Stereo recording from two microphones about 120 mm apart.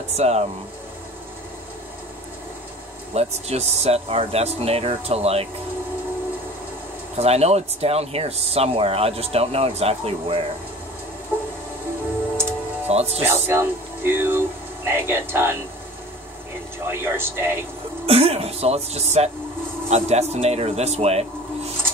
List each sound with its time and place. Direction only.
0.1 s speech: 65° right (ahead or behind)
3.2 s speech: 60° right (ahead or behind)
7.2 s speech: 60° right (ahead or behind)
12.8 s music: 60° right (ahead or behind)
13.2 s speech: 20° right (ahead or behind)
16.8 s speech: 20° right (ahead or behind)
18.0 s speech: 55° right (ahead or behind)